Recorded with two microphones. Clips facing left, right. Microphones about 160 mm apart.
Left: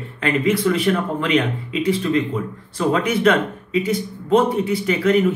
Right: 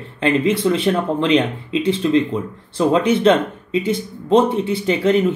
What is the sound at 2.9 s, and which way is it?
Speech, 25° right (ahead or behind).